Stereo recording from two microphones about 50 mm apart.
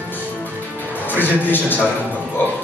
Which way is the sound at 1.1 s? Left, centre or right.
Left.